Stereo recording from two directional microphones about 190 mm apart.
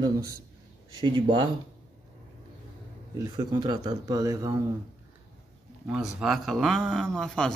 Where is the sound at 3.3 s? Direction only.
20° right (ahead or behind).